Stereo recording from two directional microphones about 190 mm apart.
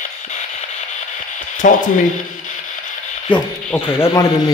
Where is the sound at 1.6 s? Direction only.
45° left (ahead or behind).